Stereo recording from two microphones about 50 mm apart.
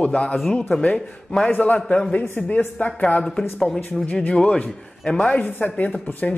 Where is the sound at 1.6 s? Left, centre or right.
Left.